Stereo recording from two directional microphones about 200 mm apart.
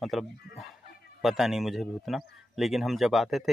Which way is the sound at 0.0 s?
Centre (ahead or behind).